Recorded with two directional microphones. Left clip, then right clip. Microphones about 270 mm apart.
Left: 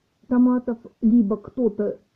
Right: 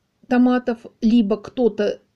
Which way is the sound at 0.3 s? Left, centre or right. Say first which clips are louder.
Right 3 dB; centre.